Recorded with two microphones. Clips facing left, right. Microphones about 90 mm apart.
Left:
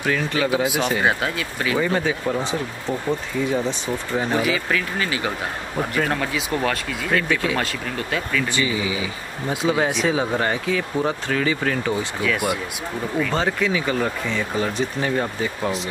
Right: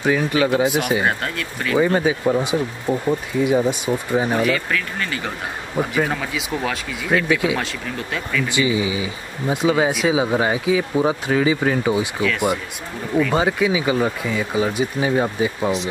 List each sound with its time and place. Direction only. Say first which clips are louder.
0.0 s speech: right 4 dB; 15° right (ahead or behind)
0.4 s speech: right 3 dB; centre (ahead or behind)
2.0 s speech: right 4 dB; 10° right (ahead or behind)
4.4 s speech: right 2 dB; 5° left (ahead or behind)
8.5 s speech: right 3 dB; 20° right (ahead or behind)
9.5 s speech: right 3 dB; centre (ahead or behind)
12.2 s speech: right 2 dB; 5° left (ahead or behind)
13.3 s speech: right 2 dB; 10° right (ahead or behind)